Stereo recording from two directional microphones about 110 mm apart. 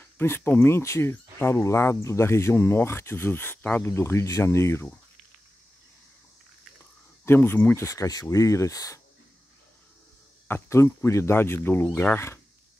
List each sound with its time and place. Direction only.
0.0 s speech: 20° left (ahead or behind)
7.2 s speech: 20° left (ahead or behind)
10.5 s speech: 25° left (ahead or behind)